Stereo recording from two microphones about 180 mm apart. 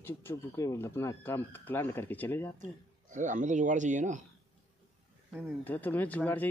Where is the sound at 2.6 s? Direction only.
45° right (ahead or behind).